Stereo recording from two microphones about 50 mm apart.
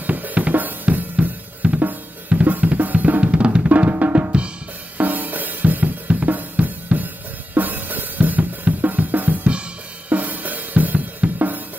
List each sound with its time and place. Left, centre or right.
0.0 s drum: right
10.0 s drum kit: right